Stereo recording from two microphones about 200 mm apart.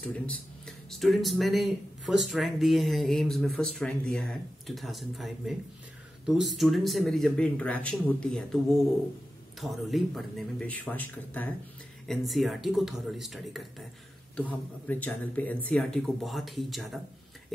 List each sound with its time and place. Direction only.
0.0 s speech: 5° left (ahead or behind)
9.6 s speech: centre (ahead or behind)